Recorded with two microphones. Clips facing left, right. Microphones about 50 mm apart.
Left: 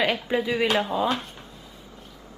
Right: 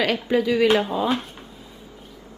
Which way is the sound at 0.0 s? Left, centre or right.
Centre.